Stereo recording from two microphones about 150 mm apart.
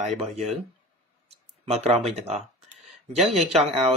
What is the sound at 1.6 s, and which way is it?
Speech, 45° right (ahead or behind).